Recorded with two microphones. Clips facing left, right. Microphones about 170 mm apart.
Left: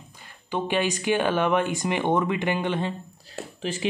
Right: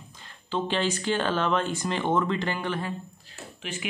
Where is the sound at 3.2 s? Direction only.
35° left (ahead or behind).